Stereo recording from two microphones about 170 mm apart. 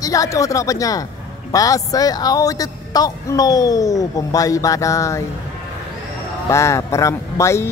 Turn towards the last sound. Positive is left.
turn(degrees=15)  # may be behind; listen again after turning